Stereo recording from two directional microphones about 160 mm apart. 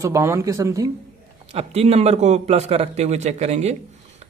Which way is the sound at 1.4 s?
40° right (ahead or behind).